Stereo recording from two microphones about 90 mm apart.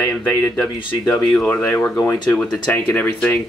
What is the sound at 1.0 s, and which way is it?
Speech, 40° left (ahead or behind).